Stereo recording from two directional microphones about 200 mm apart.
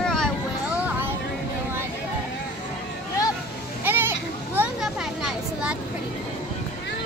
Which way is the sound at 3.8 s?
10° right (ahead or behind).